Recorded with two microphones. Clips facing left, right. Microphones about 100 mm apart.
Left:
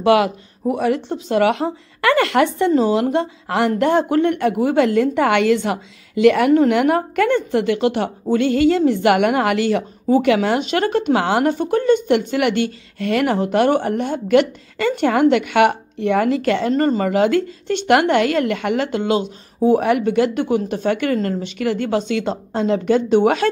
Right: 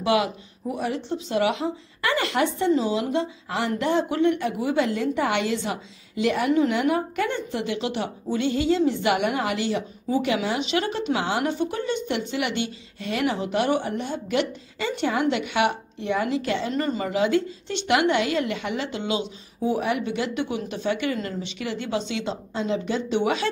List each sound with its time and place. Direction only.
0.0 s speech: 60° left (ahead or behind)
16.7 s speech: 45° left (ahead or behind)